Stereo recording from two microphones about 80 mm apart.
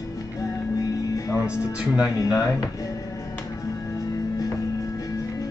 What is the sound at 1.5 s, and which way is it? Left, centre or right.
Speech, centre.